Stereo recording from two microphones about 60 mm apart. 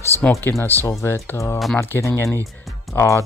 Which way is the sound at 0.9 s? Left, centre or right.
Left.